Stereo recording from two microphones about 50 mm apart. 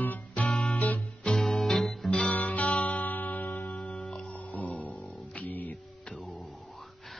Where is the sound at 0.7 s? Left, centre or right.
Left.